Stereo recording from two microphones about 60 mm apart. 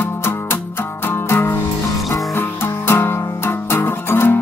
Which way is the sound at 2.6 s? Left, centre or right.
Left.